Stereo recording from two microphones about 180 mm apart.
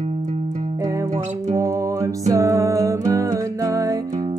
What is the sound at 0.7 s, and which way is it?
Music, 20° right (ahead or behind).